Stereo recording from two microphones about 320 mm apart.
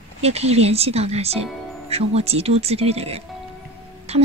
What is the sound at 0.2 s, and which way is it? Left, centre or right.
Speech, centre.